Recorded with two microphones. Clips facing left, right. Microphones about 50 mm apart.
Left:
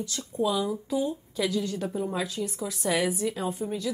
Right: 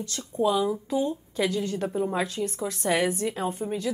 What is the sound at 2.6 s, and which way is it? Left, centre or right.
A woman's voice, right.